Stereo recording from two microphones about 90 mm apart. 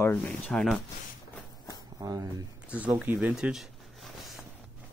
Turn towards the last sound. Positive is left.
turn(degrees=-5)  # may be behind; listen again after turning